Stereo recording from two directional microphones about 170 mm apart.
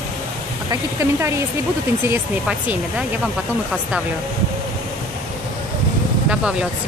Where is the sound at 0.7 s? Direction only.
20° right (ahead or behind).